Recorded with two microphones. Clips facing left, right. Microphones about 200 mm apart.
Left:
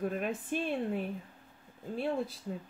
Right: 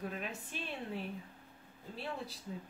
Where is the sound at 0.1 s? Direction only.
50° left (ahead or behind).